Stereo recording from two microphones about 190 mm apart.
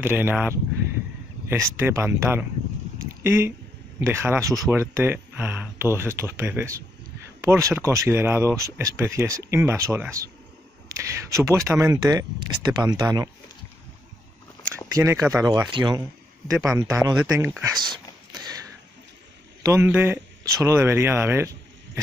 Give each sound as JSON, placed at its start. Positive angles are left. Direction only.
{"t": 0.0, "sound": "speech", "side_deg": -10}
{"t": 1.8, "sound": "speech", "side_deg": -10}
{"t": 3.1, "sound": "a sound", "side_deg": -15}
{"t": 4.0, "sound": "speech", "side_deg": -15}
{"t": 15.0, "sound": "speech", "side_deg": -15}
{"t": 17.2, "sound": "a sound", "side_deg": -15}
{"t": 19.6, "sound": "speech", "side_deg": -15}